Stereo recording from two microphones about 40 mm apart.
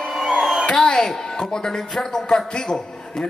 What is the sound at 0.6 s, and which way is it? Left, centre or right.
A man's voice, centre.